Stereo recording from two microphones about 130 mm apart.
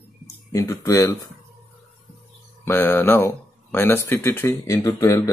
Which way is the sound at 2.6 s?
15° left (ahead or behind).